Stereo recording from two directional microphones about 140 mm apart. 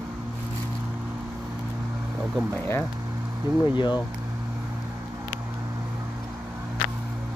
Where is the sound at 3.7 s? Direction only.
35° left (ahead or behind).